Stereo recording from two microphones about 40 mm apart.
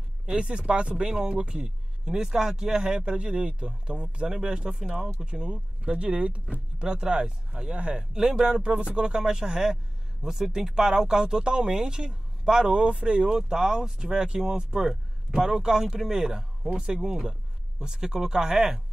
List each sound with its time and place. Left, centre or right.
0.3 s speech: right
8.2 s speech: centre
8.6 s speech: right